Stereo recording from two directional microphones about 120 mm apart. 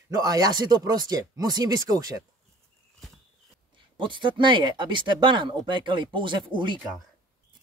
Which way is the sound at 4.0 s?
45° right (ahead or behind).